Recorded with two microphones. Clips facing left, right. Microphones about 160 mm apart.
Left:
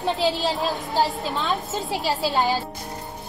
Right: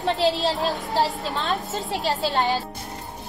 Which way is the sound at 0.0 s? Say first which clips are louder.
Right 1 dB; centre (ahead or behind).